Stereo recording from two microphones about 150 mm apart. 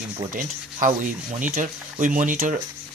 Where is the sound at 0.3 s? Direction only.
60° right (ahead or behind).